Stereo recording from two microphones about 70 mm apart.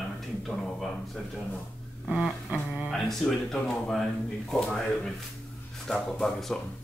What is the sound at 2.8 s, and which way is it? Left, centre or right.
Speech, centre.